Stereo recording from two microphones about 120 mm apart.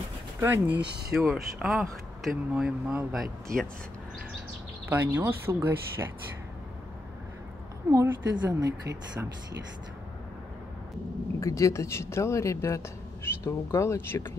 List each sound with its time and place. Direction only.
0.4 s speech: 15° right (ahead or behind)
1.1 s speech: 5° right (ahead or behind)
4.8 s a woman's voice: 15° right (ahead or behind)
7.9 s a woman's voice: 30° right (ahead or behind)
11.3 s speech: 25° left (ahead or behind)